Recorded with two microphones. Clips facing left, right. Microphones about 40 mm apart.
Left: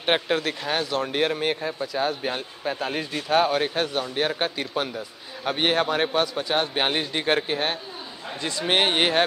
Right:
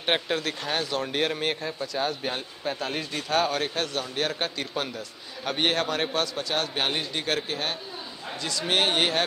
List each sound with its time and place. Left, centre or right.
0.0 s speech: centre